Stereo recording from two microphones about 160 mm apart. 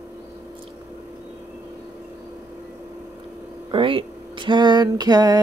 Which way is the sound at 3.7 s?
35° right (ahead or behind).